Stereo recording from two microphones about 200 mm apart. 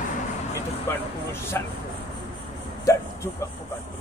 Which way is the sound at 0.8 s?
10° left (ahead or behind).